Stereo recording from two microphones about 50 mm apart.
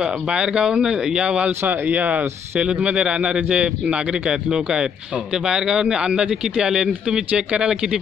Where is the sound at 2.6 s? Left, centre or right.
Right.